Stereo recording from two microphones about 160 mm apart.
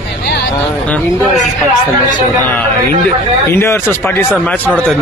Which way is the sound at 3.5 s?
15° left (ahead or behind).